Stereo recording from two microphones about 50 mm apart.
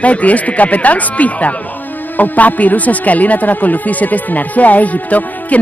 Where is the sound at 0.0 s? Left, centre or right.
Left.